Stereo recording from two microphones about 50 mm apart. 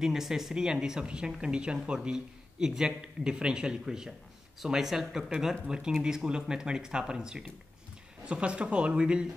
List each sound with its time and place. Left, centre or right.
0.0 s a man's voice: centre